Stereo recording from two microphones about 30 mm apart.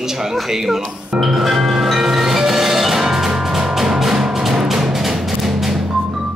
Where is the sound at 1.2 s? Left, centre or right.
Centre.